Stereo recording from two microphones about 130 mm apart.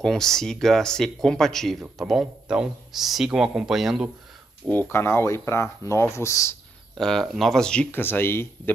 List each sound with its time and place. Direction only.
0.0 s speech: 5° left (ahead or behind)
4.6 s speech: 15° left (ahead or behind)
7.0 s speech: 5° left (ahead or behind)